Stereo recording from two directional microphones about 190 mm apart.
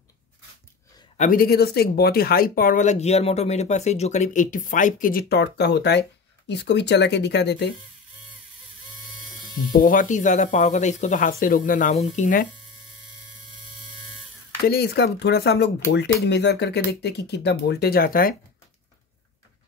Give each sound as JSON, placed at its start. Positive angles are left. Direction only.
{"t": 1.1, "sound": "speech", "side_deg": 45}
{"t": 9.8, "sound": "speech", "side_deg": 45}
{"t": 14.7, "sound": "speech", "side_deg": 55}